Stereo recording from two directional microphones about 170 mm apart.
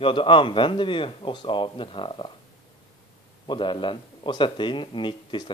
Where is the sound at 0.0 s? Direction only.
30° left (ahead or behind).